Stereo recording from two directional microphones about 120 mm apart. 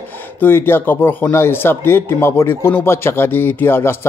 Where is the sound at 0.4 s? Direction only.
20° left (ahead or behind).